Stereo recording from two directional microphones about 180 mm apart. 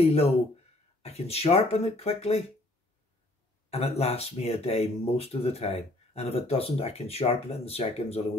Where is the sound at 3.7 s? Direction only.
35° left (ahead or behind).